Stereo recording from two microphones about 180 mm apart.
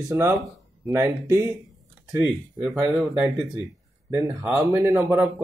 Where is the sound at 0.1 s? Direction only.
20° right (ahead or behind).